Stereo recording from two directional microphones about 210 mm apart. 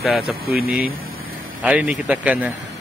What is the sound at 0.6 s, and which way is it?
Speech, 45° left (ahead or behind).